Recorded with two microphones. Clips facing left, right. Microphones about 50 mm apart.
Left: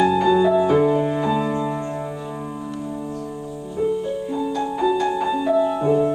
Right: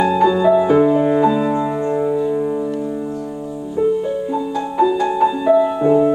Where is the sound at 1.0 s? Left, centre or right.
Right.